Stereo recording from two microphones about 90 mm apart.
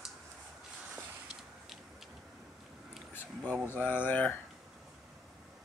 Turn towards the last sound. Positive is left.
turn(degrees=20)  # may be behind; listen again after turning